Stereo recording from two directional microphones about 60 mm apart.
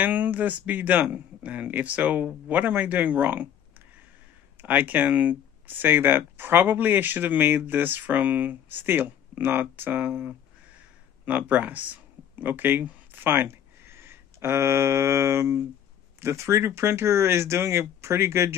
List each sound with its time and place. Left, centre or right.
0.0 s speech: right
4.6 s speech: right